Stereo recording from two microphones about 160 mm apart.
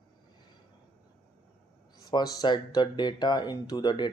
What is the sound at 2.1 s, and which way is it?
Speech, 25° left (ahead or behind).